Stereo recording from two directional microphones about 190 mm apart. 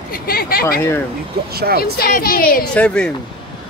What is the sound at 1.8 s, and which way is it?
Speech, 50° left (ahead or behind).